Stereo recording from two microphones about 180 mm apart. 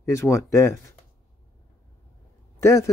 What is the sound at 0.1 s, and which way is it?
Speech, 15° left (ahead or behind).